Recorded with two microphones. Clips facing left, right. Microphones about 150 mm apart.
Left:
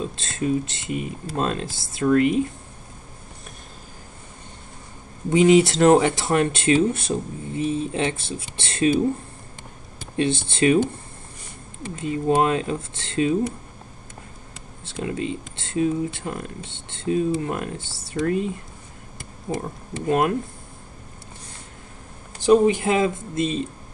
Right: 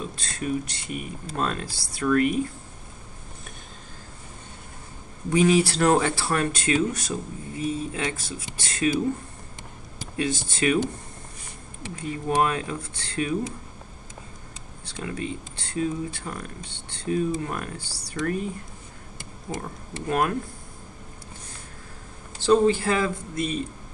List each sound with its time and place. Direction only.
0.0 s speech: 25° left (ahead or behind)
5.3 s speech: 20° left (ahead or behind)
10.1 s speech: 25° left (ahead or behind)
11.9 s speech: 25° left (ahead or behind)
14.9 s speech: 25° left (ahead or behind)
19.6 s speech: 20° left (ahead or behind)
22.4 s speech: 15° left (ahead or behind)